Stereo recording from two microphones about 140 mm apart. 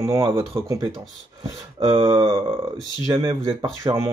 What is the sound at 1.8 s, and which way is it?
Speech, 35° right (ahead or behind).